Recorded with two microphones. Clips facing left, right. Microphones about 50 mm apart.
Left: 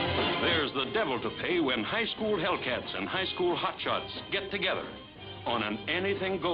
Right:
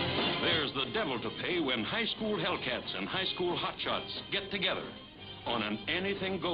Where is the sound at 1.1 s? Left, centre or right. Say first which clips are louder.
Left 4 dB; centre.